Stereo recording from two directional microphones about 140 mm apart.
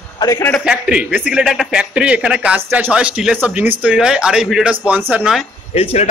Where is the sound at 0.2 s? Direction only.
20° left (ahead or behind).